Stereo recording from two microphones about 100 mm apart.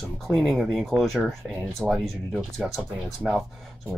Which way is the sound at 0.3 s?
Centre (ahead or behind).